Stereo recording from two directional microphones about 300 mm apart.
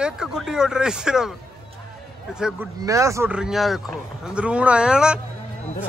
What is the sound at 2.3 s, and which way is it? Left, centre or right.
Speech, centre.